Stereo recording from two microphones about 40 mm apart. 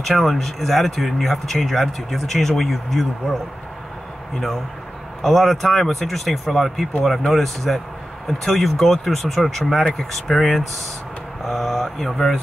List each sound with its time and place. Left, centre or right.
0.0 s speech: centre
5.2 s speech: centre